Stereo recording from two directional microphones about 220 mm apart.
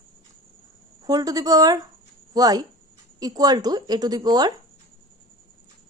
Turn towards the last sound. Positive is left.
turn(degrees=-20)  # may be behind; listen again after turning